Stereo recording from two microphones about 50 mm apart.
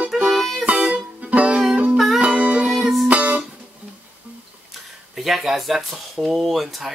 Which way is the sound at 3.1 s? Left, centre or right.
Right.